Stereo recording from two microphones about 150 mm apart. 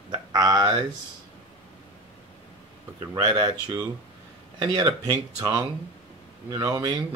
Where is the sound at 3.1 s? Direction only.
30° right (ahead or behind).